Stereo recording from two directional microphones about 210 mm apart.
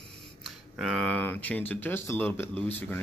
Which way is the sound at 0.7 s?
Centre (ahead or behind).